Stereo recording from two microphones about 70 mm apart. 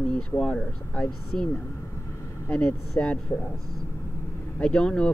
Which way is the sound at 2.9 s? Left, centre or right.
Centre.